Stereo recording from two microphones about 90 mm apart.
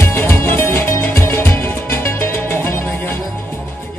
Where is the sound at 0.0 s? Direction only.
25° left (ahead or behind).